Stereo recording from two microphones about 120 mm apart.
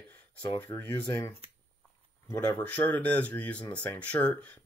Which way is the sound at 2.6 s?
15° left (ahead or behind).